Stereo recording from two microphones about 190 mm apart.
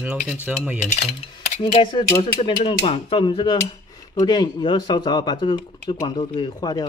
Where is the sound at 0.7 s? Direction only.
30° left (ahead or behind).